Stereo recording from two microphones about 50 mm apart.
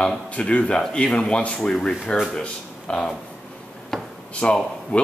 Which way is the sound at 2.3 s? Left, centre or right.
Centre.